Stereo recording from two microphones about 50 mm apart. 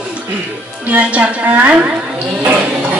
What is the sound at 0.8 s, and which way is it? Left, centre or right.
Speech, right.